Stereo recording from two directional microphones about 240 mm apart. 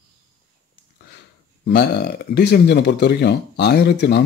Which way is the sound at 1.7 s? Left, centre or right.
Left.